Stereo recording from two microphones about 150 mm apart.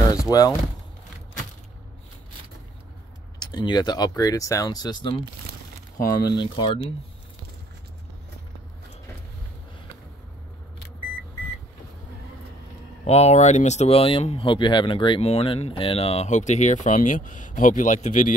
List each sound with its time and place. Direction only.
0.0 s a sound: 25° left (ahead or behind)
3.3 s speech: 30° left (ahead or behind)
6.2 s speech: 30° left (ahead or behind)
13.0 s speech: 45° left (ahead or behind)